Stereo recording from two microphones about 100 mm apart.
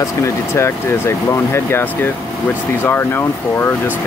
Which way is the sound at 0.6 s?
25° left (ahead or behind).